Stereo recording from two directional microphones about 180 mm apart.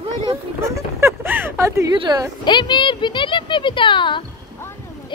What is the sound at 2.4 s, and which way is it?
Speech, 25° left (ahead or behind).